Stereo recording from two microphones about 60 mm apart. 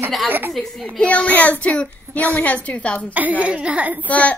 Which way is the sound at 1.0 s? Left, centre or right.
Left.